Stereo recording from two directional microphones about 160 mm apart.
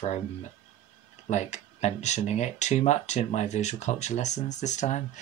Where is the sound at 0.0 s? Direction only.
45° left (ahead or behind).